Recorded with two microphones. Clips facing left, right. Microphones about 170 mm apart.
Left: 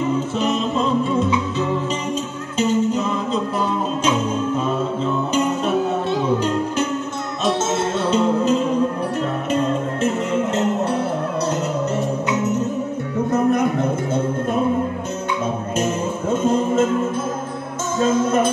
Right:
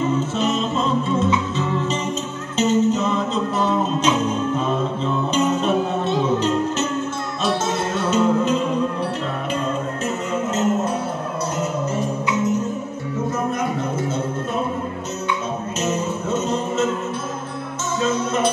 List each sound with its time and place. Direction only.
0.4 s music: 15° left (ahead or behind)
2.5 s music: 10° left (ahead or behind)
8.0 s music: 30° left (ahead or behind)
15.8 s music: 50° left (ahead or behind)
18.0 s music: 50° left (ahead or behind)